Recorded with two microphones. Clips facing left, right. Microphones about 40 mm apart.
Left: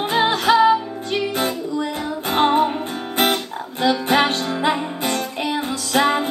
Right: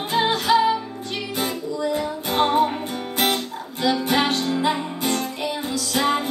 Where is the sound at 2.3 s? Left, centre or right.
Left.